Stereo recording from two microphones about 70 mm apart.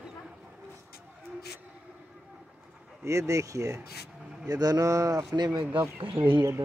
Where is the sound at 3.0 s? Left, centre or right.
Right.